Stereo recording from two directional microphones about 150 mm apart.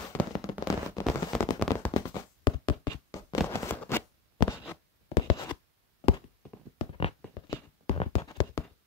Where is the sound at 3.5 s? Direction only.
15° left (ahead or behind).